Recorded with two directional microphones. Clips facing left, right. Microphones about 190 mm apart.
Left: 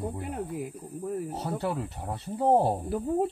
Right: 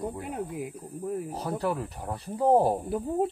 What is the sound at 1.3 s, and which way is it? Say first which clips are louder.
Speech: right 1 dB; 25° left (ahead or behind).